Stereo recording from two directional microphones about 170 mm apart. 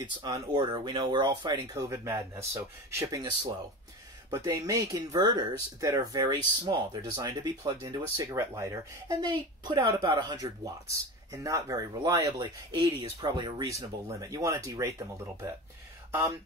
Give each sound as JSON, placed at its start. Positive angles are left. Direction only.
{"t": 0.0, "sound": "speech", "side_deg": -25}